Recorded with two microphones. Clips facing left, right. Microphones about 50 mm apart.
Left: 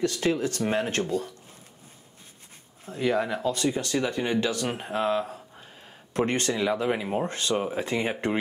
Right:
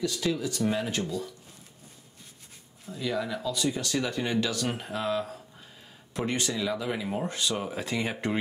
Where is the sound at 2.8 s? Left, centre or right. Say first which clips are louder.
Left 5 dB; left.